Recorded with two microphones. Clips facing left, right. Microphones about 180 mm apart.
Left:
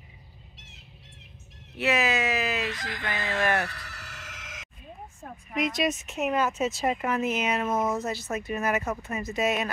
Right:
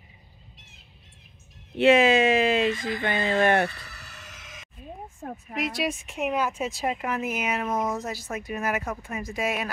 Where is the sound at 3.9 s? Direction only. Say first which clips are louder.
Left 2 dB; 90° left.